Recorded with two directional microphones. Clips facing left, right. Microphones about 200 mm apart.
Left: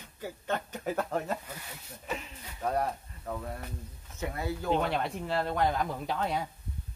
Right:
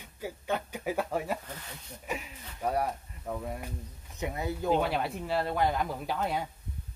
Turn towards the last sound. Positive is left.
turn(degrees=-5)  # may be behind; listen again after turning